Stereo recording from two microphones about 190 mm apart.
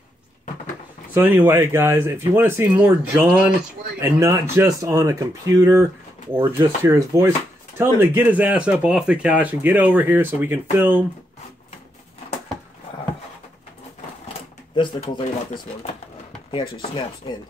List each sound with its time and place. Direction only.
1.1 s speech: 10° right (ahead or behind)
14.8 s speech: 25° left (ahead or behind)